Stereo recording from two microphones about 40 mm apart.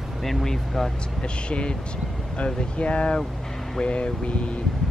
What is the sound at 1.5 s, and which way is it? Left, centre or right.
Speech, left.